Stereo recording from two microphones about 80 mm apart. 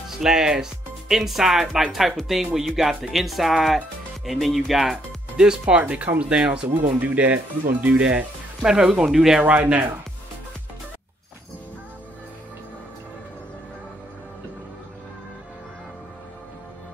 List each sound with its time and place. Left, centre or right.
0.2 s speech: centre
9.4 s speech: centre